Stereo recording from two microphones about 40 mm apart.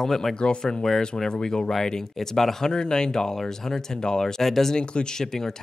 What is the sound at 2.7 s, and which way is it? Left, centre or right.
Speech, centre.